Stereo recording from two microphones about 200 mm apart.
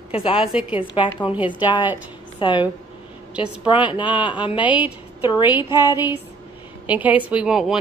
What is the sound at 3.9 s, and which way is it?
Speech, 25° left (ahead or behind).